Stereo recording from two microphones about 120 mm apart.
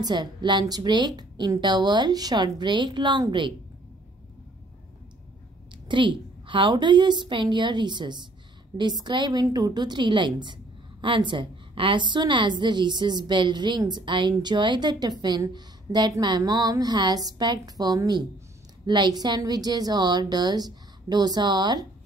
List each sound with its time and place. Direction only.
0.0 s a woman's voice: 35° right (ahead or behind)
5.9 s a woman's voice: 45° right (ahead or behind)